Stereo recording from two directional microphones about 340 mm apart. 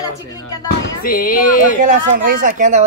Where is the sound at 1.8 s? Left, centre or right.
Right.